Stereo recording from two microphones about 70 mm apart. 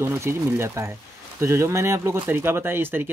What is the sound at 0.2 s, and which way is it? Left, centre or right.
Speech, right.